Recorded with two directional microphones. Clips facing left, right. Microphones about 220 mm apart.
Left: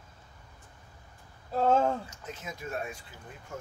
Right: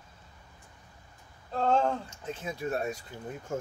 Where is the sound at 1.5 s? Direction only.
5° left (ahead or behind).